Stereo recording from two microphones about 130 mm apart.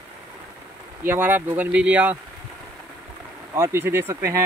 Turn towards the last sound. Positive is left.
turn(degrees=-20)  # may be behind; listen again after turning